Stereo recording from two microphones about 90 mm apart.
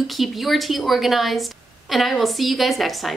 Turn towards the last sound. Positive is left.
turn(degrees=0)  # may be behind; listen again after turning